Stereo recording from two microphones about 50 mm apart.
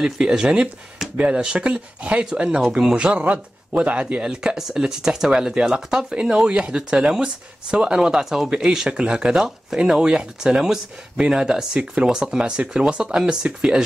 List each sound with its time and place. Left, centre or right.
0.0 s speech: centre
8.5 s speech: centre
9.3 s speech: centre